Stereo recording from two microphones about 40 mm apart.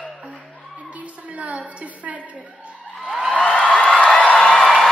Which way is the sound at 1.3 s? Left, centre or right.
Right.